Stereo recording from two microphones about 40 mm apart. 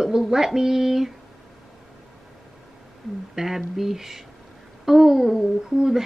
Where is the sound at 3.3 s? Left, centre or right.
Centre.